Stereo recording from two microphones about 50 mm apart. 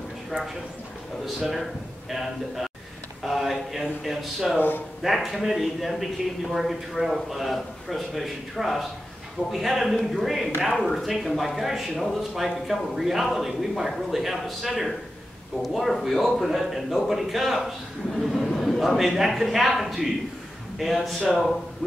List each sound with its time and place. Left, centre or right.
1.2 s speech: centre
4.6 s speech: left
5.0 s speech: centre